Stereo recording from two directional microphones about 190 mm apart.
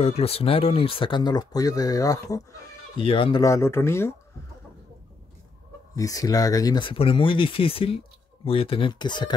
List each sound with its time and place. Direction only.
0.0 s speech: 30° left (ahead or behind)
3.0 s speech: 30° left (ahead or behind); by 4.1 s 15° left (ahead or behind)
5.9 s speech: 20° left (ahead or behind)